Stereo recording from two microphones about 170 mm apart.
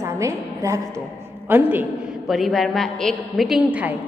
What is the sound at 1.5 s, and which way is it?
Speech, 10° right (ahead or behind).